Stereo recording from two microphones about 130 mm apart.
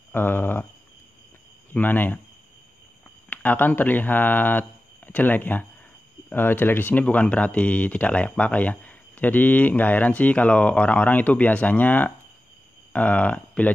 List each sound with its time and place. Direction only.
0.1 s speech: 15° left (ahead or behind)
1.7 s speech: 15° left (ahead or behind)
3.3 s speech: 15° left (ahead or behind)